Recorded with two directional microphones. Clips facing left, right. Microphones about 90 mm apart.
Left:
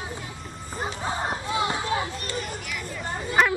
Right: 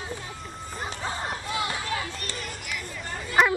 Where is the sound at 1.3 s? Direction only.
25° left (ahead or behind).